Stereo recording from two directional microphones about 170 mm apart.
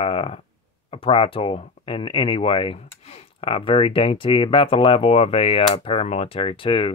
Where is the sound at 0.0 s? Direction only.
35° left (ahead or behind).